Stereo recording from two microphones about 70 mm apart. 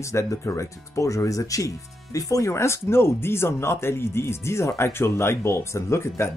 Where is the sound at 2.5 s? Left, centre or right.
Left.